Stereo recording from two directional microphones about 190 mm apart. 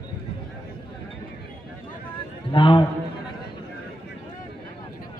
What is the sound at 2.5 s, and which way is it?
Speech, 25° left (ahead or behind).